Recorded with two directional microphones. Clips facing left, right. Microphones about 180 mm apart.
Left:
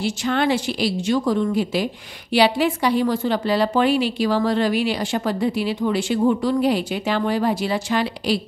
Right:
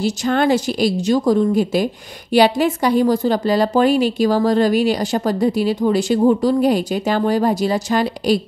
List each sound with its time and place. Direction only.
0.0 s a woman's voice: 40° right (ahead or behind)